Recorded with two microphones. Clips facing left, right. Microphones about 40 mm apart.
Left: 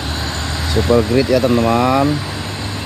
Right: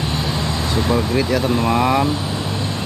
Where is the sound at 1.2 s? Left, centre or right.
Right.